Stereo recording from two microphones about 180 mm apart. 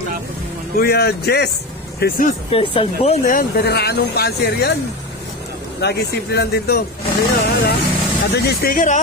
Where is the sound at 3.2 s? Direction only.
55° left (ahead or behind).